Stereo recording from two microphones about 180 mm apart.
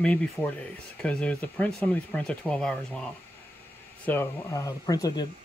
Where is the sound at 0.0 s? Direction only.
5° left (ahead or behind).